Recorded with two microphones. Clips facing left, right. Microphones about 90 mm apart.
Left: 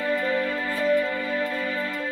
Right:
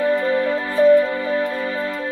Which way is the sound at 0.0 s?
25° right (ahead or behind).